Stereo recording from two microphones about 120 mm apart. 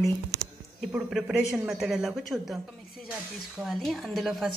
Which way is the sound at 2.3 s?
15° right (ahead or behind).